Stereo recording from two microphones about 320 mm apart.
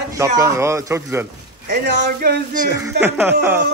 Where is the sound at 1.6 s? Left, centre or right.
Right.